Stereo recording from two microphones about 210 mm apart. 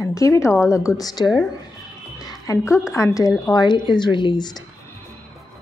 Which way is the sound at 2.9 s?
15° left (ahead or behind).